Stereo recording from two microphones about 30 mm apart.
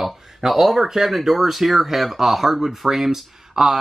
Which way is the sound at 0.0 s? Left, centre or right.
Centre.